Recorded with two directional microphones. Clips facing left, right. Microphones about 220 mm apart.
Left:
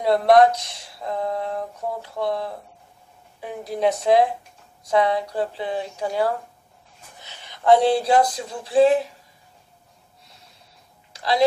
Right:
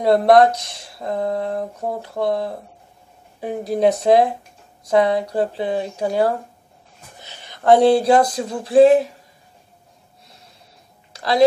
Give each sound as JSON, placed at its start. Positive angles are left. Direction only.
{"t": 0.0, "sound": "speech", "side_deg": -45}
{"t": 7.5, "sound": "speech", "side_deg": -50}